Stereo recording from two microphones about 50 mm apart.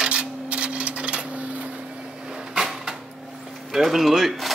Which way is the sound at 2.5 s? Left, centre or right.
Centre.